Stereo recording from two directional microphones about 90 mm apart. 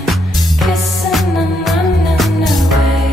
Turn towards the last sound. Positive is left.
turn(degrees=0)  # may be behind; listen again after turning